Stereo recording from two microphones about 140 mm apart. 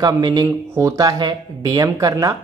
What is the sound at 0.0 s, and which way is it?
Speech, 30° right (ahead or behind).